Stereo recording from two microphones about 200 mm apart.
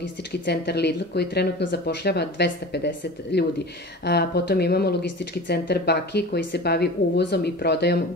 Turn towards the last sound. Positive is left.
turn(degrees=55)  # may be behind; listen again after turning